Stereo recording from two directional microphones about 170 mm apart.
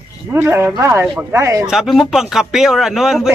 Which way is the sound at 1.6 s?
Centre (ahead or behind).